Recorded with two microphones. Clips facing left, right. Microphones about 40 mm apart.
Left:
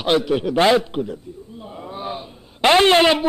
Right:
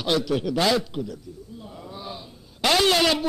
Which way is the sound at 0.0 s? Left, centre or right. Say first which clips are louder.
Left 5 dB; left.